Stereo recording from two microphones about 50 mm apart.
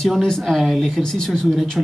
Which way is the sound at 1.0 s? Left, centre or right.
Centre.